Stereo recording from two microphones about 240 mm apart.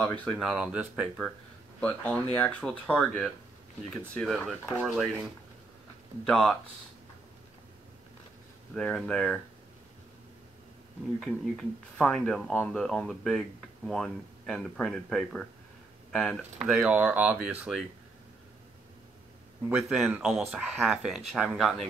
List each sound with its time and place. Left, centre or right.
0.0 s speech: centre
8.7 s speech: centre
11.1 s speech: centre
19.7 s speech: centre